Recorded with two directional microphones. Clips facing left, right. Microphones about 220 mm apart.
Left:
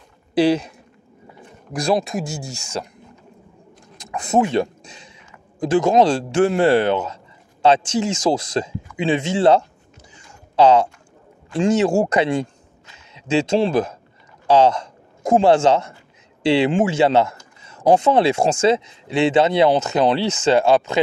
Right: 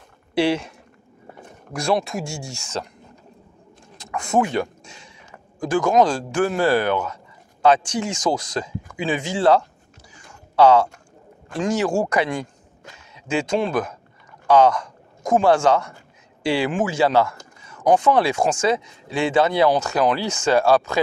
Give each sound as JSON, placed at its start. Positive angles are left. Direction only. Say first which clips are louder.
{"t": 0.3, "sound": "speech", "louder": "left 4 dB", "side_deg": 20}
{"t": 1.7, "sound": "speech", "louder": "left 2 dB", "side_deg": 15}
{"t": 4.0, "sound": "a sound", "louder": "left 2 dB", "side_deg": 20}
{"t": 5.6, "sound": "speech", "louder": "left 2 dB", "side_deg": 25}
{"t": 10.1, "sound": "a sound", "louder": "left 1 dB", "side_deg": 20}
{"t": 11.5, "sound": "speech", "louder": "left 4 dB", "side_deg": 25}